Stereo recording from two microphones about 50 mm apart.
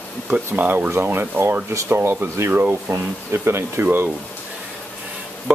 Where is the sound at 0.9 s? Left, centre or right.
Right.